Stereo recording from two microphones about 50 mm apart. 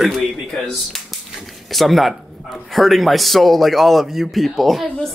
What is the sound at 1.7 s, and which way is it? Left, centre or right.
Speech, centre.